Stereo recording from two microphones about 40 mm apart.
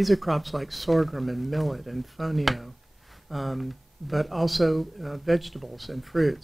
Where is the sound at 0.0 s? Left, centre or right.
Centre.